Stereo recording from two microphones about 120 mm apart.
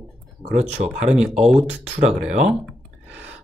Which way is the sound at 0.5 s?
70° right (ahead or behind).